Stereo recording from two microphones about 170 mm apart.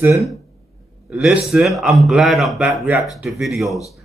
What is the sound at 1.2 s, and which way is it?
A man's voice, 5° right (ahead or behind).